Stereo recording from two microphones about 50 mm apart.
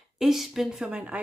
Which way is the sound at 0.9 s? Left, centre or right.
Right.